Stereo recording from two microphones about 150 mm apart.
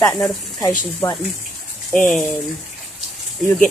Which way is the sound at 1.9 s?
5° left (ahead or behind).